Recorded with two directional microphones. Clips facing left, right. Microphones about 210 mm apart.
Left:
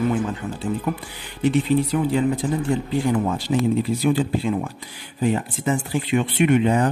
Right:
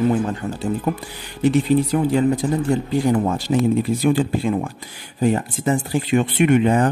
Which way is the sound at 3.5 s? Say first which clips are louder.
Right 2 dB; 45° right (ahead or behind).